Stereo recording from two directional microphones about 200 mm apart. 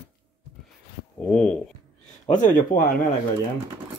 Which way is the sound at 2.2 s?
40° left (ahead or behind).